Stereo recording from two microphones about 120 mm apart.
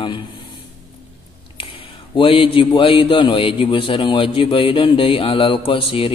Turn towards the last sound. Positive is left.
turn(degrees=50)  # may be behind; listen again after turning